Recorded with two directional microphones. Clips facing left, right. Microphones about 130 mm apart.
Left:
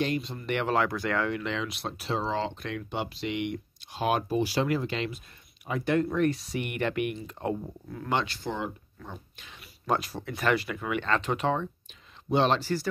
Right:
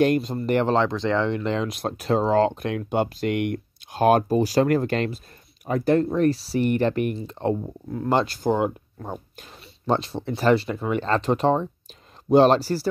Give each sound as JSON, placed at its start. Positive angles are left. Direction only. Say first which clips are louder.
{"t": 0.0, "sound": "speech", "louder": "right 9 dB", "side_deg": -45}
{"t": 1.4, "sound": "speech", "louder": "right 7 dB", "side_deg": -40}
{"t": 8.1, "sound": "speech", "louder": "right 8 dB", "side_deg": -40}
{"t": 9.6, "sound": "speech", "louder": "right 5 dB", "side_deg": -30}